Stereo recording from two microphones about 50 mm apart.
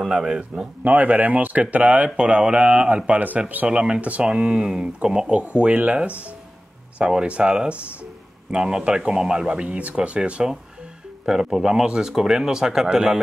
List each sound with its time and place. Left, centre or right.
0.0 s speech: centre
0.8 s speech: right
3.6 s speech: centre
7.0 s speech: centre
11.2 s speech: centre